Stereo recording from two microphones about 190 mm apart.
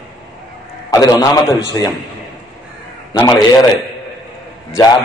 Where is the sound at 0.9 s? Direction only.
20° left (ahead or behind).